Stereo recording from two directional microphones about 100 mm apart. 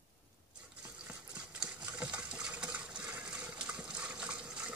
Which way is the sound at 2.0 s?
10° right (ahead or behind).